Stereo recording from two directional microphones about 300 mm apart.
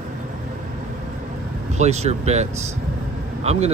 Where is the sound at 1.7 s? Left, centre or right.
Right.